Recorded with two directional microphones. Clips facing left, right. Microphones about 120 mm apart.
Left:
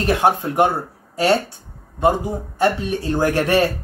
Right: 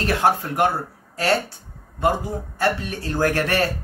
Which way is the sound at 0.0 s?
20° left (ahead or behind).